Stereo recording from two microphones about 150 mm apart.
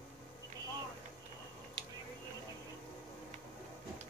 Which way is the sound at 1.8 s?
30° right (ahead or behind).